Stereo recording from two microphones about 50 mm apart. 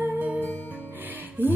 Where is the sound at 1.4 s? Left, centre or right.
Right.